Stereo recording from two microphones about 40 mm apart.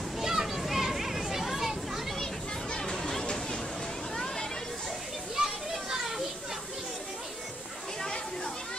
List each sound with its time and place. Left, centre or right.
0.2 s children playing: centre
2.8 s music: centre
4.1 s a sound: centre
5.3 s children playing: centre